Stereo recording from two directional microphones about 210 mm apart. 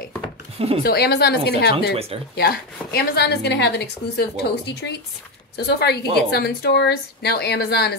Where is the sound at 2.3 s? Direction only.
50° left (ahead or behind).